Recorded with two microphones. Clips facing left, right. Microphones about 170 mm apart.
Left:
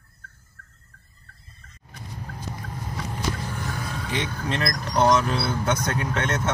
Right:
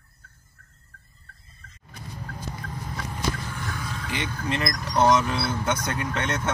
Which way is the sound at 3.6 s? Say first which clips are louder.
Left 2 dB; 40° left (ahead or behind).